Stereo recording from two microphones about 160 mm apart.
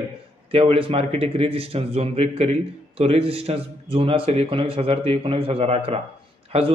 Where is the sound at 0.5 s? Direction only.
35° right (ahead or behind).